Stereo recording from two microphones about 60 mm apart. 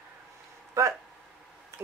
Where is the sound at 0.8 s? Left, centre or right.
Right.